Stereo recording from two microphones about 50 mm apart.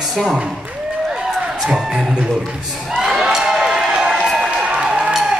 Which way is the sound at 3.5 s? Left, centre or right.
Centre.